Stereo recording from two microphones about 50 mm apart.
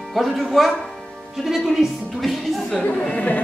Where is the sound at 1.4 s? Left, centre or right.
Centre.